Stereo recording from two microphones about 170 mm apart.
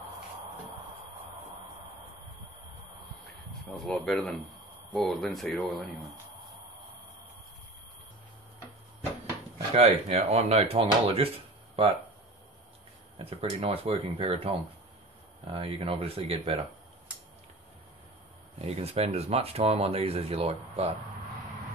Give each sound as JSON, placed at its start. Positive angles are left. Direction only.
{"t": 3.8, "sound": "speech", "side_deg": 5}
{"t": 9.8, "sound": "speech", "side_deg": -35}
{"t": 13.2, "sound": "speech", "side_deg": -35}
{"t": 18.6, "sound": "speech", "side_deg": -35}